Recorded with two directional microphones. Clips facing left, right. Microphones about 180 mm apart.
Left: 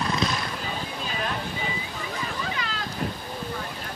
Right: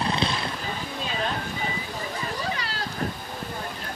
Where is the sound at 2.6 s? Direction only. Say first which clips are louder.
Left 1 dB; 35° right (ahead or behind).